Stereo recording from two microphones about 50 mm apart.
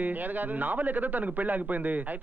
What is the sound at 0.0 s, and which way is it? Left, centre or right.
A man's voice, right.